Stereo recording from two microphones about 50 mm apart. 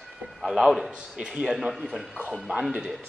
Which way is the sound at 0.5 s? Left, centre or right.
Centre.